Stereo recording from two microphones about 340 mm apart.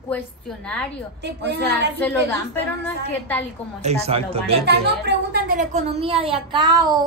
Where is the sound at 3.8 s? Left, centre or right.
Centre.